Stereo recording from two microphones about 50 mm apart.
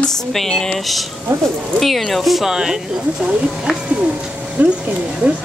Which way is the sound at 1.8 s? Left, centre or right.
Centre.